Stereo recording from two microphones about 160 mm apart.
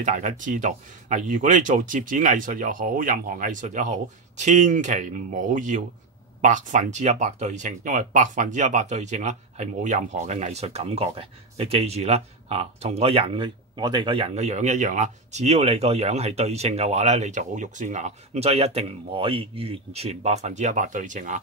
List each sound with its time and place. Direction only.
0.0 s speech: 50° right (ahead or behind)